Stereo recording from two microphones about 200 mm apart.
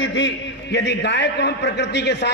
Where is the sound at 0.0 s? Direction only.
65° left (ahead or behind).